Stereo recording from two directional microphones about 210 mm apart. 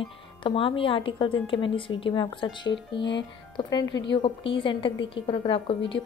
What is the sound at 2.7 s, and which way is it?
Speech, 60° left (ahead or behind).